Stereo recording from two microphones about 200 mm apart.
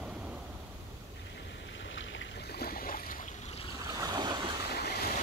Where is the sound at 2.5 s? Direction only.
45° left (ahead or behind).